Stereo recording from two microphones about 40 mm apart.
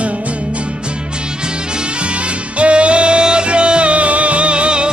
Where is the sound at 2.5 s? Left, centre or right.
Right.